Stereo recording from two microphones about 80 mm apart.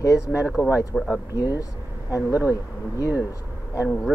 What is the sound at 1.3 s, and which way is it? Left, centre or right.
Speech, left.